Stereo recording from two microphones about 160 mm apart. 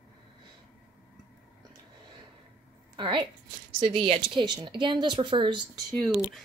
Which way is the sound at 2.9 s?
30° right (ahead or behind).